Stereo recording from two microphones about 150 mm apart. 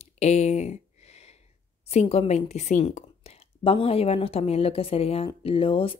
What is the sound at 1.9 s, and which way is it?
Speech, 45° left (ahead or behind).